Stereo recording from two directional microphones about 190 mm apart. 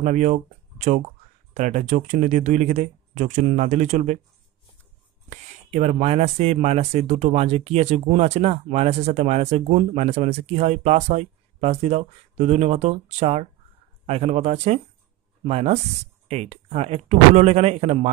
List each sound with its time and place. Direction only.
0.0 s speech: 40° right (ahead or behind)
5.3 s speech: 40° right (ahead or behind)